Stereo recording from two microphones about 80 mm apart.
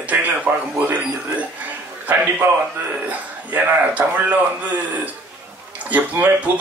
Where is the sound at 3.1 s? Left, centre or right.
Centre.